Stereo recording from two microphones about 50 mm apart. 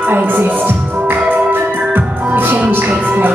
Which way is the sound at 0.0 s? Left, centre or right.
Right.